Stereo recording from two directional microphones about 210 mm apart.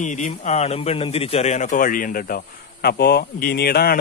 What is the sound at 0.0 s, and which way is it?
A man's voice, 35° left (ahead or behind).